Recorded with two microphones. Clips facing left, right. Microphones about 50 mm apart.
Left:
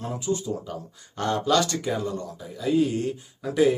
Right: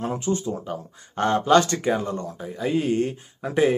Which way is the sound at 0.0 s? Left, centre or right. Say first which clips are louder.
Right 3 dB; right.